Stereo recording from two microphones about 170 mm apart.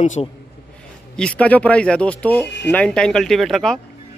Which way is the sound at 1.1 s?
5° left (ahead or behind).